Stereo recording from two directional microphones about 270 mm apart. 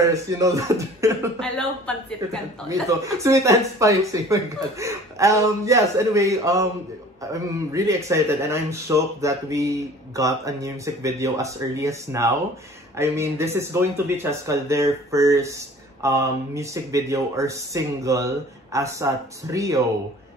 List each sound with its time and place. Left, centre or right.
0.0 s speech: centre
1.4 s speech: centre
2.7 s speech: centre